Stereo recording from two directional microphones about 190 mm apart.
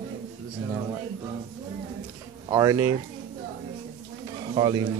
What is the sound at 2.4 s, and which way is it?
Speech, 20° right (ahead or behind).